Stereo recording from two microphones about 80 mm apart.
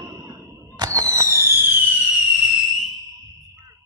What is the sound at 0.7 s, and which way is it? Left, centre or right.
Fireworks, right.